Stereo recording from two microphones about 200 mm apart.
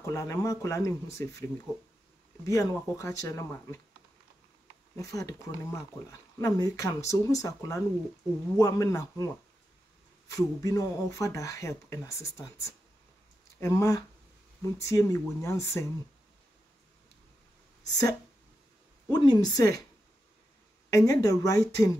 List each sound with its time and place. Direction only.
0.0 s speech: 15° left (ahead or behind)
2.4 s speech: 15° left (ahead or behind)
4.9 s speech: 15° left (ahead or behind)
17.8 s speech: 20° left (ahead or behind)
20.9 s speech: 15° left (ahead or behind)